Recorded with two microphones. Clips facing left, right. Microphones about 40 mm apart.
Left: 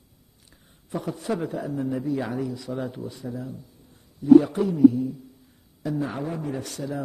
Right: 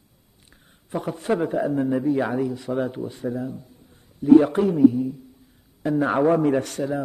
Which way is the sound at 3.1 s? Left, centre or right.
Right.